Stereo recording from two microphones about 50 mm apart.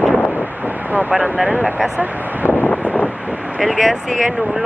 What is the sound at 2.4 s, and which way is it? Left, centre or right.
Wind noise, left.